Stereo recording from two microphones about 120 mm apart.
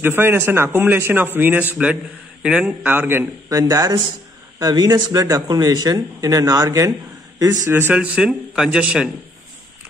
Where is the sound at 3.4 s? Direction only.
30° right (ahead or behind).